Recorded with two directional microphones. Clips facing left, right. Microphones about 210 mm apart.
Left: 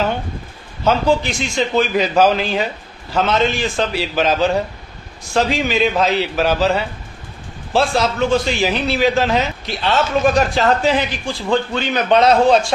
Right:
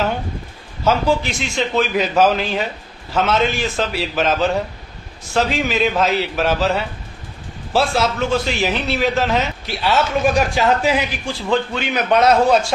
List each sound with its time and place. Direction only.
0.8 s a man's voice: centre (ahead or behind)
10.2 s a man's voice: 10° right (ahead or behind)
12.0 s a man's voice: 30° left (ahead or behind)